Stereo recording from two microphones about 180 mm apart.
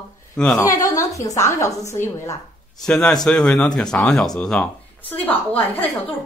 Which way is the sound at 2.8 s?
5° left (ahead or behind).